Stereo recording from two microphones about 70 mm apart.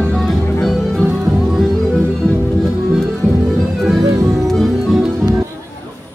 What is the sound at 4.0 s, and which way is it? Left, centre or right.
Music, right.